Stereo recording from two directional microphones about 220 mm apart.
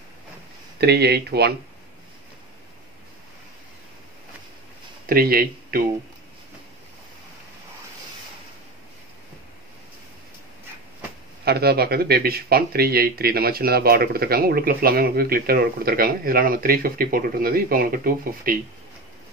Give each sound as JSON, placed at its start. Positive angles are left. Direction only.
{"t": 0.7, "sound": "speech", "side_deg": -45}
{"t": 5.0, "sound": "speech", "side_deg": -45}
{"t": 11.4, "sound": "speech", "side_deg": -45}